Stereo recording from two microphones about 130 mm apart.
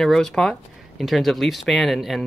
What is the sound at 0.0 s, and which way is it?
Speech, 5° left (ahead or behind).